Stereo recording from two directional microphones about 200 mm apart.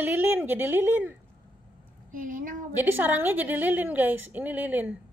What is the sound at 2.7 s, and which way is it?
A woman's voice, 10° right (ahead or behind).